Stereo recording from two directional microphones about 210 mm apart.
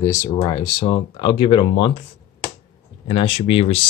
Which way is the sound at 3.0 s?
25° left (ahead or behind).